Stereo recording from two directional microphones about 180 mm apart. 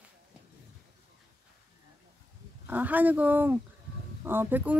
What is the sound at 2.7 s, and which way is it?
Speech, 10° right (ahead or behind).